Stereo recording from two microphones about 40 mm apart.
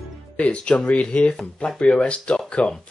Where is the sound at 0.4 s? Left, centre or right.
Left.